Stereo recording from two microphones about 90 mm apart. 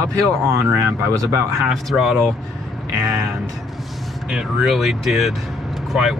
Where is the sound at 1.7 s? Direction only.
Centre (ahead or behind).